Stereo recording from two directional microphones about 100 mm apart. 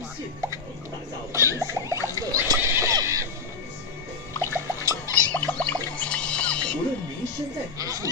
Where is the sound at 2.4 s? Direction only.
35° right (ahead or behind).